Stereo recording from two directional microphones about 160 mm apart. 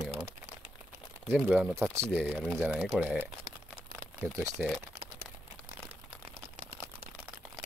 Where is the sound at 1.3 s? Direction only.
5° right (ahead or behind).